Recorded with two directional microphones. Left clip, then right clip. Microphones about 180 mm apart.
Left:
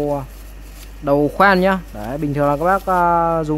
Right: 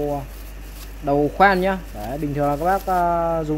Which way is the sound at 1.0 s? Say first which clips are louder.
Left 3 dB; 40° left (ahead or behind).